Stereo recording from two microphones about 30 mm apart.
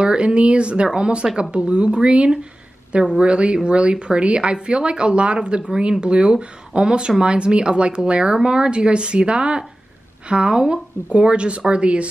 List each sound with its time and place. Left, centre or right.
0.0 s speech: right
3.2 s speech: right
10.5 s speech: right
11.1 s speech: right